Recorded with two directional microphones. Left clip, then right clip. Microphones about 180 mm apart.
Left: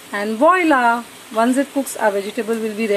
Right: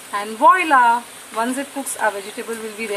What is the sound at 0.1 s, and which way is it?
Speech, 15° left (ahead or behind).